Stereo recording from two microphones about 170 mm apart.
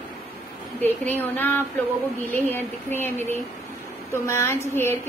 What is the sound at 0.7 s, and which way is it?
A woman's voice, 10° left (ahead or behind).